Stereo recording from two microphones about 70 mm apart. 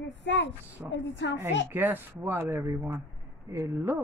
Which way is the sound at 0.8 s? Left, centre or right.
Right.